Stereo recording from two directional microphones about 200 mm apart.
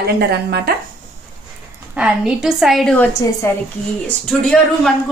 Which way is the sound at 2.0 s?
5° right (ahead or behind).